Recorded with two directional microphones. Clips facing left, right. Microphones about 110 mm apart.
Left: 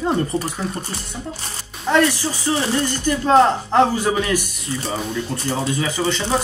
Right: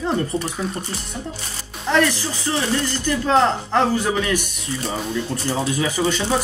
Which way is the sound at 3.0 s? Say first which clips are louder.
Left 3 dB; 15° left (ahead or behind).